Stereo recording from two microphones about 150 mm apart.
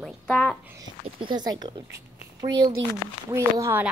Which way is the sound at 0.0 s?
5° left (ahead or behind).